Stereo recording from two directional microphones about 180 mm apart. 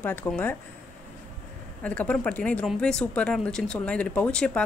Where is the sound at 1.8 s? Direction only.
10° left (ahead or behind).